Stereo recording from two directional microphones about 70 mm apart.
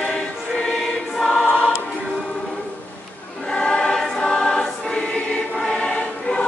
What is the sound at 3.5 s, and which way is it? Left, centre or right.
Choir, centre.